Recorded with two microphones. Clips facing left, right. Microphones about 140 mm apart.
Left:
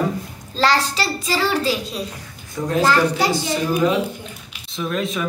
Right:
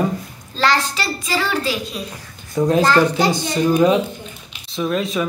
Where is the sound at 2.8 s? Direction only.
10° left (ahead or behind).